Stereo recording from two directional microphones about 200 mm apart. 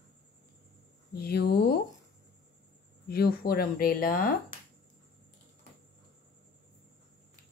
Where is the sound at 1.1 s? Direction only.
50° left (ahead or behind).